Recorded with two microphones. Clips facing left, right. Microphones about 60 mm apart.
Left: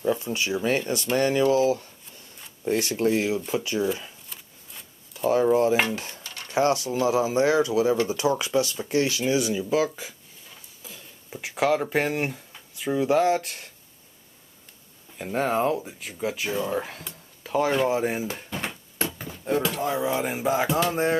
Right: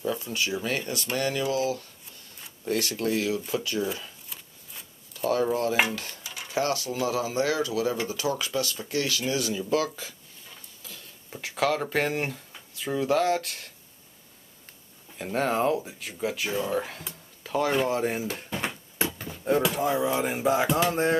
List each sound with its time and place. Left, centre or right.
0.2 s speech: left
5.1 s speech: centre
5.9 s stir: left
6.2 s dishes: centre
6.5 s speech: left
10.8 s a sound: centre
11.4 s speech: centre
15.1 s speech: centre
18.5 s a sound: centre
19.1 s speech: centre